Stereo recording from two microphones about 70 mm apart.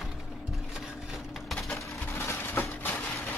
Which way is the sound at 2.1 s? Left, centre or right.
Left.